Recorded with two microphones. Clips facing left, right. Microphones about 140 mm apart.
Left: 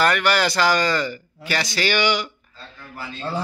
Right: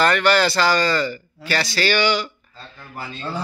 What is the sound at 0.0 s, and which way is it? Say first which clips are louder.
Speech: right 2 dB; 10° left (ahead or behind).